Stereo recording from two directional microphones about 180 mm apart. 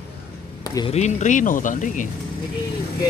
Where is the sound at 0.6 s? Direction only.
20° left (ahead or behind).